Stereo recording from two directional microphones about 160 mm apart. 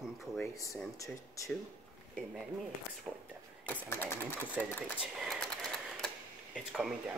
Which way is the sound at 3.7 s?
15° left (ahead or behind).